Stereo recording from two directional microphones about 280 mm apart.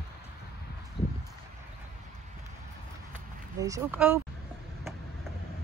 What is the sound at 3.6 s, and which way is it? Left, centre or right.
Speech, centre.